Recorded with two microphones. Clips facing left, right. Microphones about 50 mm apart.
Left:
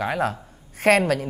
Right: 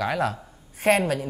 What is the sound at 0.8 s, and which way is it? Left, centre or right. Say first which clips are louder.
Speech: left 3 dB; left.